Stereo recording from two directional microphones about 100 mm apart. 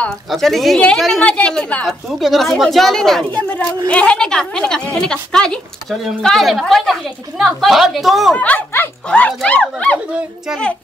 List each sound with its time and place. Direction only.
0.3 s a woman's voice: centre (ahead or behind)
3.3 s a woman's voice: 15° left (ahead or behind); by 8.4 s centre (ahead or behind)
8.4 s speech: 15° left (ahead or behind)